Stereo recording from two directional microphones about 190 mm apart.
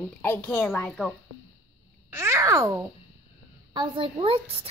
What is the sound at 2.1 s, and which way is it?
A child's voice, 15° right (ahead or behind).